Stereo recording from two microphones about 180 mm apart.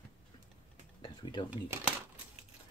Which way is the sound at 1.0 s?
25° left (ahead or behind).